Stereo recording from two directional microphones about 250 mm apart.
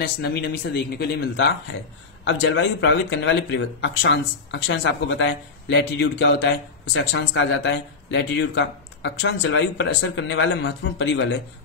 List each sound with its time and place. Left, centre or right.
0.0 s speech: left